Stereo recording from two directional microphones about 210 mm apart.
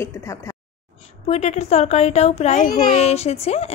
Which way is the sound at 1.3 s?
30° left (ahead or behind).